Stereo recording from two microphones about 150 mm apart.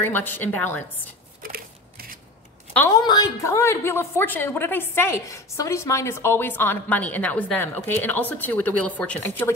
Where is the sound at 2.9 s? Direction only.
25° left (ahead or behind).